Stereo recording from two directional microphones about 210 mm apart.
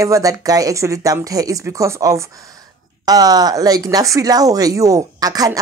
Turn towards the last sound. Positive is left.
turn(degrees=-20)  # may be behind; listen again after turning